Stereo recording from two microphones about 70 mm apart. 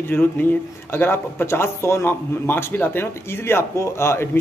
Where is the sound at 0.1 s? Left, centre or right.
Left.